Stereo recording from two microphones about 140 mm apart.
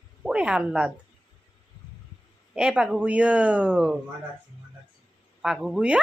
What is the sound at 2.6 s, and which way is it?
Speech, 5° right (ahead or behind).